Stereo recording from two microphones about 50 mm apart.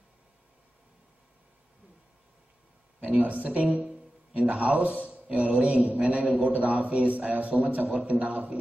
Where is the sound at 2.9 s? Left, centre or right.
Right.